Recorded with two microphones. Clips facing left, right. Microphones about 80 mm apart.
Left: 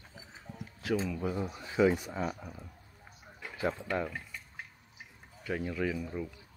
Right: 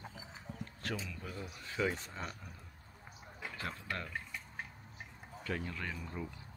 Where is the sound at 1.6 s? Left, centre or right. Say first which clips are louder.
Left 9 dB; centre.